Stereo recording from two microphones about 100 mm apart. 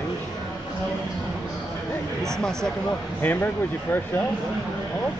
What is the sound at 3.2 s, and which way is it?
Speech, 20° left (ahead or behind).